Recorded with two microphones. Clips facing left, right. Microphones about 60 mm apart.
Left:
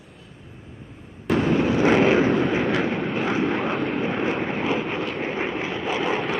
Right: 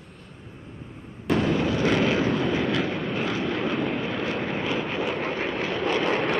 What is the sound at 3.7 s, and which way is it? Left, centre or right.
Vehicle, centre.